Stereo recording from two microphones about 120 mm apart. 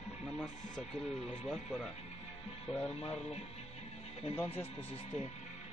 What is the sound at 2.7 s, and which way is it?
Music, 50° left (ahead or behind).